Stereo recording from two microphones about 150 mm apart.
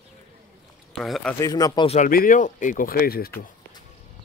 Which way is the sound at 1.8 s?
45° left (ahead or behind).